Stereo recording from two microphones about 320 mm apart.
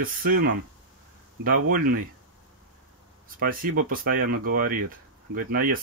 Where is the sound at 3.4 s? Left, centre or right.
Right.